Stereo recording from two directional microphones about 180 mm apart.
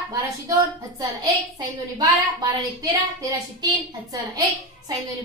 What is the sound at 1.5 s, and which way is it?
A woman's voice, 20° right (ahead or behind).